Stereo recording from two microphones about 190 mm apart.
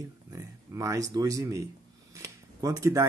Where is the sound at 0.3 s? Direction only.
15° right (ahead or behind).